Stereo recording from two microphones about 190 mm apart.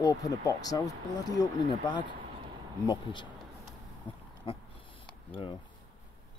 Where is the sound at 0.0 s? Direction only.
20° left (ahead or behind).